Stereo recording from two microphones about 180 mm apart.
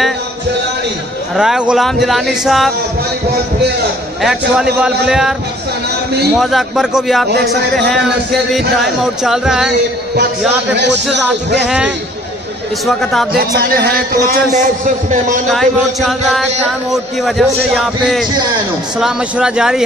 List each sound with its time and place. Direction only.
1.3 s a man's voice: 5° right (ahead or behind)
4.2 s a man's voice: centre (ahead or behind)
6.4 s a man's voice: centre (ahead or behind)
8.7 s a man's voice: centre (ahead or behind)
11.6 s a man's voice: 5° right (ahead or behind)
13.6 s a man's voice: 55° right (ahead or behind)
15.5 s a man's voice: centre (ahead or behind)